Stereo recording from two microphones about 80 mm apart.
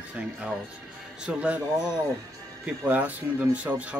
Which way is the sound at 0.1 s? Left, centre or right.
Centre.